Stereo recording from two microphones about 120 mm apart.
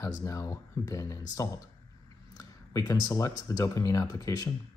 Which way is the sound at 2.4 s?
30° left (ahead or behind).